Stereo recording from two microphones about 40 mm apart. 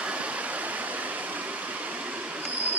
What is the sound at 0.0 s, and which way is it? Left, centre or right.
Waterfall, right.